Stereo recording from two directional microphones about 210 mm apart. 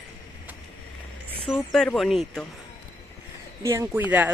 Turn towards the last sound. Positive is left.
turn(degrees=-10)  # may be behind; listen again after turning